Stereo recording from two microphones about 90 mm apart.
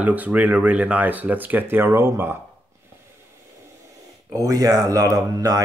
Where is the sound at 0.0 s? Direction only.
15° right (ahead or behind).